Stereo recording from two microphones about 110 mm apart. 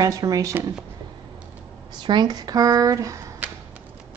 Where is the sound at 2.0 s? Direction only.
40° right (ahead or behind).